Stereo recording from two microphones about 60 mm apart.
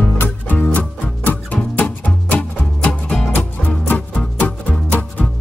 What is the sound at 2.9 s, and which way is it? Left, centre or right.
Music, centre.